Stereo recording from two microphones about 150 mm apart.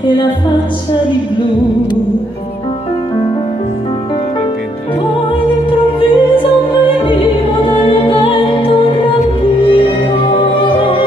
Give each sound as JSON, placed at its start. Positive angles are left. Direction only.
{"t": 0.0, "sound": "music", "side_deg": 30}
{"t": 5.7, "sound": "opera", "side_deg": 35}